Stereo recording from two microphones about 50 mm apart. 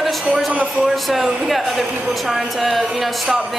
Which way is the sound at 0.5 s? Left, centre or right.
Right.